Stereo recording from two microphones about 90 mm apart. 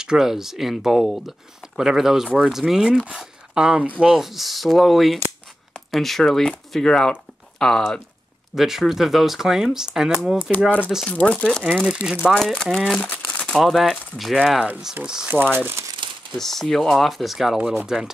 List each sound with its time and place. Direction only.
0.0 s speech: 5° right (ahead or behind)
11.1 s speech: 15° left (ahead or behind)
11.6 s speech: 10° right (ahead or behind)
13.0 s crumpling: 15° left (ahead or behind)
13.6 s speech: centre (ahead or behind)
15.5 s speech: 25° right (ahead or behind)
16.0 s crumpling: 65° right (ahead or behind)
16.3 s speech: 5° left (ahead or behind)